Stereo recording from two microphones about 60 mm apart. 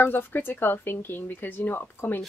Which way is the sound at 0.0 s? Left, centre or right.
Left.